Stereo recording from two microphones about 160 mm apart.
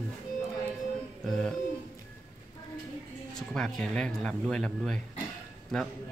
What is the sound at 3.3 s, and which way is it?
Speech, centre (ahead or behind).